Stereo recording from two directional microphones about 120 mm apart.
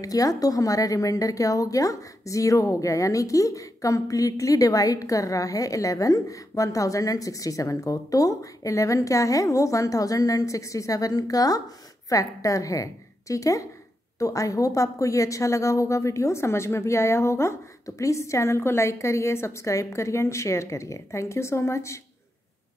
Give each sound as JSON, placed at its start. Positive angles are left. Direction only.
{"t": 0.0, "sound": "a woman's voice", "side_deg": 30}